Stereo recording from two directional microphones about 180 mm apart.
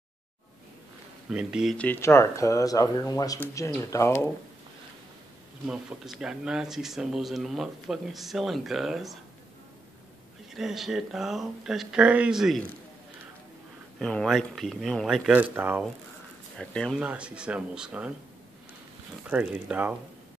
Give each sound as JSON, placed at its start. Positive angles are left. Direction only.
{"t": 1.3, "sound": "speech", "side_deg": -5}
{"t": 1.8, "sound": "speech", "side_deg": 10}
{"t": 5.7, "sound": "speech", "side_deg": -5}
{"t": 10.5, "sound": "speech", "side_deg": 0}
{"t": 13.9, "sound": "speech", "side_deg": 0}
{"t": 16.5, "sound": "speech", "side_deg": 0}
{"t": 19.2, "sound": "speech", "side_deg": -5}